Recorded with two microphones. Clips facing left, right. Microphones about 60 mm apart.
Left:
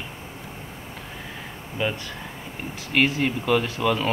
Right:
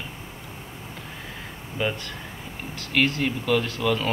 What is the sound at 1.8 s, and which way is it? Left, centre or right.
Speech, centre.